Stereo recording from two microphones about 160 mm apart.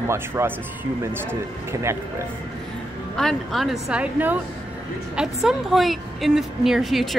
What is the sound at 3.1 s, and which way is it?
A woman's voice, centre (ahead or behind).